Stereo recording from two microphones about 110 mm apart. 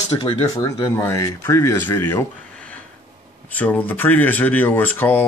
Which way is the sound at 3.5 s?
15° left (ahead or behind).